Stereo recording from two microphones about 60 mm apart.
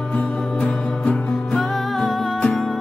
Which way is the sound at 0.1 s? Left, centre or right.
Centre.